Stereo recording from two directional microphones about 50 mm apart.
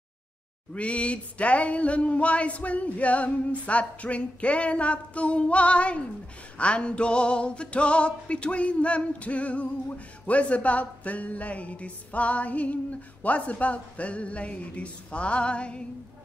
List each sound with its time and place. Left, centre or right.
0.7 s music: left